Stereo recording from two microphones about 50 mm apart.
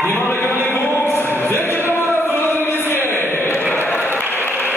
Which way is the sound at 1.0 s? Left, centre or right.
Left.